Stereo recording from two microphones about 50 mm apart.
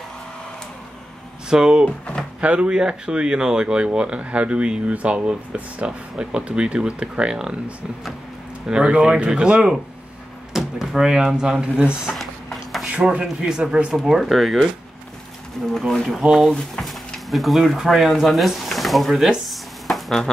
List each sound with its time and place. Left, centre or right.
1.5 s speech: centre
10.5 s speech: centre
12.2 s a sound: centre
12.8 s speech: right
13.2 s speech: centre
13.9 s speech: centre
15.9 s speech: centre
16.2 s speech: centre